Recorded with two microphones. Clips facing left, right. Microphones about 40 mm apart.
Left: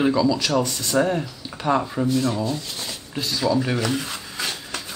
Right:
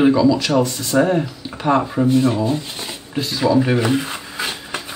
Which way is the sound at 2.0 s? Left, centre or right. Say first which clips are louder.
Right 6 dB; right.